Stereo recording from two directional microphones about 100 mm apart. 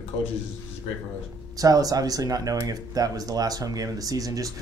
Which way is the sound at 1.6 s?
35° right (ahead or behind).